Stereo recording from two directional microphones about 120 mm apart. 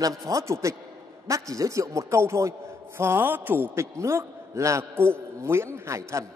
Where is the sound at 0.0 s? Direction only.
30° right (ahead or behind).